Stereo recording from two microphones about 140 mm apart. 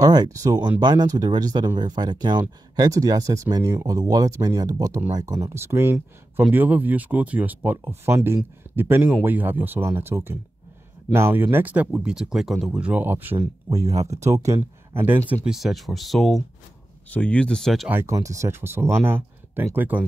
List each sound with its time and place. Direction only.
0.0 s speech: 30° right (ahead or behind)
13.8 s speech: 50° right (ahead or behind)
14.2 s speech: 20° right (ahead or behind)
15.4 s speech: centre (ahead or behind)
17.8 s speech: 20° right (ahead or behind)